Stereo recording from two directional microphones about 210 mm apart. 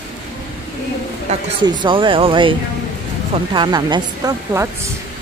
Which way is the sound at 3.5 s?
20° right (ahead or behind).